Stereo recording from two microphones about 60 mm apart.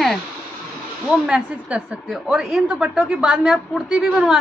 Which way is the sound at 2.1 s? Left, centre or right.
Centre.